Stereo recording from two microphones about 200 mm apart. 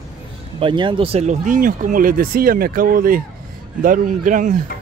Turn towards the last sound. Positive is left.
turn(degrees=-40)  # may be behind; listen again after turning